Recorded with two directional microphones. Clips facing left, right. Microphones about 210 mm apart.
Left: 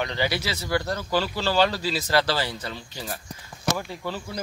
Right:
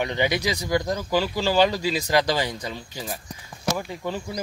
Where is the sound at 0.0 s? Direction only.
15° right (ahead or behind).